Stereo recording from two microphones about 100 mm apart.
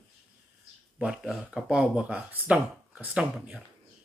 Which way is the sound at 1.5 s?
10° right (ahead or behind).